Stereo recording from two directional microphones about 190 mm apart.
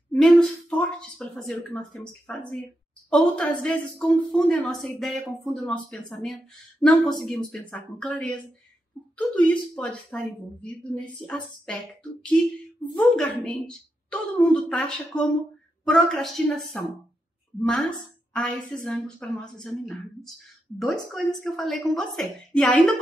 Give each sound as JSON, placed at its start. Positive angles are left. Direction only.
{"t": 0.1, "sound": "a woman's voice", "side_deg": 5}